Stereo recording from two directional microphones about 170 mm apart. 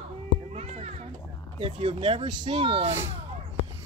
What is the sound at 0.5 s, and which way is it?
A child's voice, 40° right (ahead or behind).